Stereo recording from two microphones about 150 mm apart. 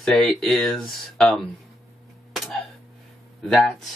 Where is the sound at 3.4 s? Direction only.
5° left (ahead or behind).